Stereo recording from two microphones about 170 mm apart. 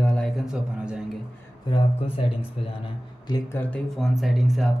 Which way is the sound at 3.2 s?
20° left (ahead or behind).